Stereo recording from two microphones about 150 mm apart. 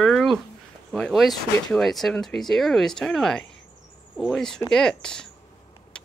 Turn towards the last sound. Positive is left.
turn(degrees=5)  # may be behind; listen again after turning